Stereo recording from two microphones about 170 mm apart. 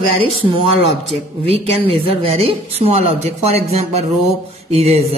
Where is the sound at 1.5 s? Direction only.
35° right (ahead or behind).